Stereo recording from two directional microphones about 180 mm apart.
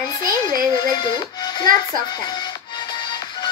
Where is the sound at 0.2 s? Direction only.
50° right (ahead or behind).